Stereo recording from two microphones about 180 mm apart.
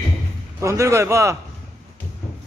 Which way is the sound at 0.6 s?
15° right (ahead or behind).